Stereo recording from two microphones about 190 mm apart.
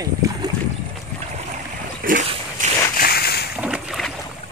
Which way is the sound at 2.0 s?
45° right (ahead or behind).